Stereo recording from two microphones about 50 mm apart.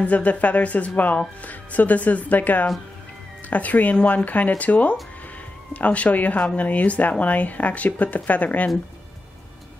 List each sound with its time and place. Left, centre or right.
0.0 s speech: left